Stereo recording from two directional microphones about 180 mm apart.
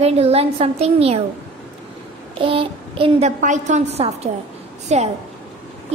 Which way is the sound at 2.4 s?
30° right (ahead or behind).